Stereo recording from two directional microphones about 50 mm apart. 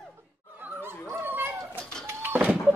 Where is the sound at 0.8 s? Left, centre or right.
Right.